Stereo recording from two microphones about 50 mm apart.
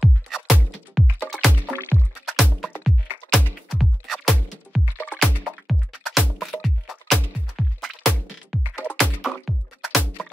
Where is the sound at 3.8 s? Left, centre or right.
Centre.